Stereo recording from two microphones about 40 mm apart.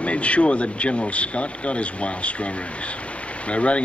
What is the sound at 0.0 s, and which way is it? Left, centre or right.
Speech, left.